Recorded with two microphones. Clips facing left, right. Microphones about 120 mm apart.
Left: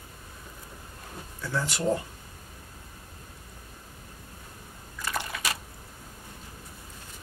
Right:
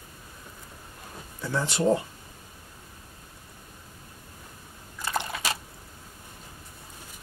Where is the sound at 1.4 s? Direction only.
20° right (ahead or behind).